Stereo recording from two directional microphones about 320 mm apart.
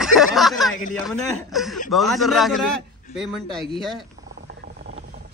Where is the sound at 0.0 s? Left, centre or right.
Centre.